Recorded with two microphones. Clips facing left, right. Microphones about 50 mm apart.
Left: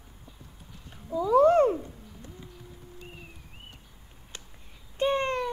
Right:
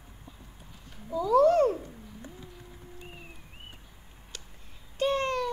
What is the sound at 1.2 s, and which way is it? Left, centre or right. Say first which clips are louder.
Cat: left 2 dB; left.